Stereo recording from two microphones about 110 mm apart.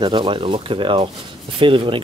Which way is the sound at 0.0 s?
45° right (ahead or behind).